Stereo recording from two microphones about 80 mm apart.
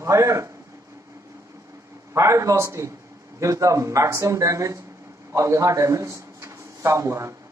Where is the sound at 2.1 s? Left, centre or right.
Right.